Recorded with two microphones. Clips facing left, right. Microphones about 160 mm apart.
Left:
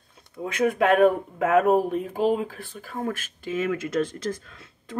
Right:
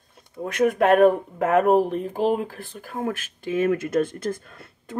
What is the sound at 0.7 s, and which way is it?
Speech, 45° right (ahead or behind).